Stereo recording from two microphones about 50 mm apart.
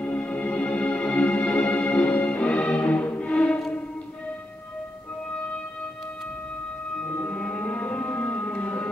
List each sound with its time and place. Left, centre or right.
0.0 s music: left
7.1 s music: left